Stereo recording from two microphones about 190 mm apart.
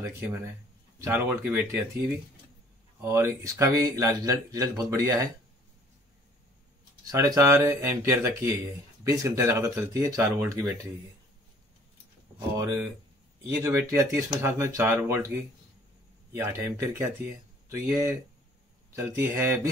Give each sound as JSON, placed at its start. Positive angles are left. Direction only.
{"t": 0.3, "sound": "speech", "side_deg": -10}
{"t": 3.0, "sound": "speech", "side_deg": -15}
{"t": 7.1, "sound": "speech", "side_deg": -20}
{"t": 12.4, "sound": "speech", "side_deg": -15}
{"t": 16.3, "sound": "speech", "side_deg": -15}